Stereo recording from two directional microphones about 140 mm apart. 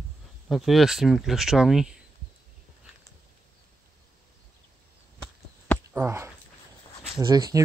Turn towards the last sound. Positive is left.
turn(degrees=-25)  # may be behind; listen again after turning